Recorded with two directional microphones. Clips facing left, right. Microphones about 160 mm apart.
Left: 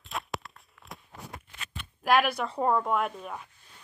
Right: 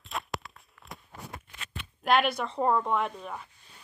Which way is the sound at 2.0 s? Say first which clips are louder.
Left 1 dB; 5° left (ahead or behind).